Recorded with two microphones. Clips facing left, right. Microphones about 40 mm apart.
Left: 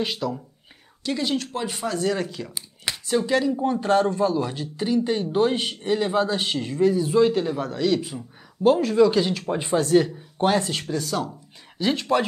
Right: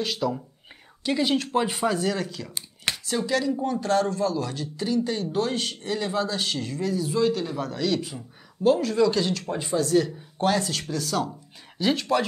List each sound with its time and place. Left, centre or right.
0.2 s speech: centre
2.0 s speech: centre
9.6 s speech: left
10.0 s speech: left
11.0 s speech: centre